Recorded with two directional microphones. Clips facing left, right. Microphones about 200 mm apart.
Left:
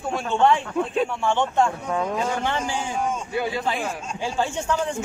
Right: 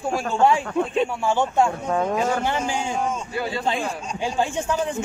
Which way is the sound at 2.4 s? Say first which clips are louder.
Right 2 dB; 10° right (ahead or behind).